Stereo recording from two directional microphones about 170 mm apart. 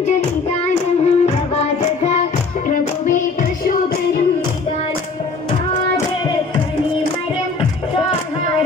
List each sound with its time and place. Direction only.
0.0 s music: 40° left (ahead or behind)